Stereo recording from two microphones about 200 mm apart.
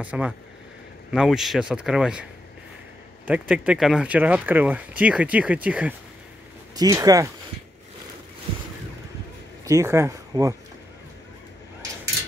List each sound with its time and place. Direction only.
0.0 s speech: 5° right (ahead or behind)
3.3 s speech: 5° right (ahead or behind)
6.7 s speech: 20° right (ahead or behind)
9.7 s speech: 15° right (ahead or behind)